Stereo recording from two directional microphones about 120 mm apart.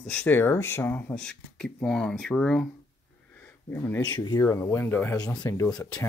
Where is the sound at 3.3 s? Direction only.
15° left (ahead or behind).